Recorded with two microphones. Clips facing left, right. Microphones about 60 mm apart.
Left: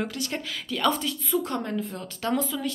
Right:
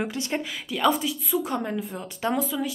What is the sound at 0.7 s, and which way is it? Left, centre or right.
Speech, centre.